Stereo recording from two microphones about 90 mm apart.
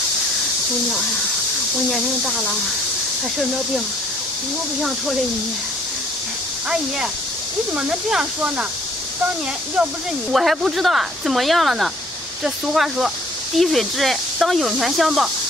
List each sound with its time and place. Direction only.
1.9 s speech: centre (ahead or behind)
7.7 s speech: 10° right (ahead or behind)
10.3 s speech: 5° right (ahead or behind)